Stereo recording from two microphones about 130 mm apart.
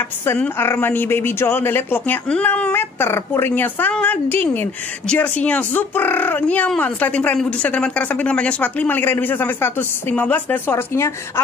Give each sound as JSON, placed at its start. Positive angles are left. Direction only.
{"t": 0.3, "sound": "speech", "side_deg": 20}